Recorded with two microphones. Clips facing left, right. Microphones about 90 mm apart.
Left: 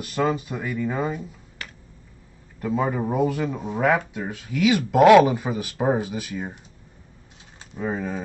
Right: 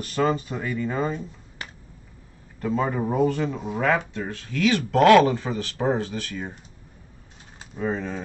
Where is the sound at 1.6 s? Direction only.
25° right (ahead or behind).